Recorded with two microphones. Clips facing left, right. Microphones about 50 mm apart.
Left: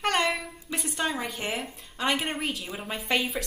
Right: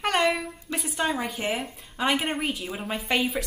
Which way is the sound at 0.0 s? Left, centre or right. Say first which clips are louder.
Right 2 dB; centre.